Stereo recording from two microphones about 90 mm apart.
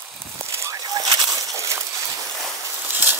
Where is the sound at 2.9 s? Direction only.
20° right (ahead or behind).